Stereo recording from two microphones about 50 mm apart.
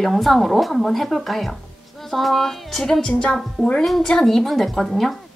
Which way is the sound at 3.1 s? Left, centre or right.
Left.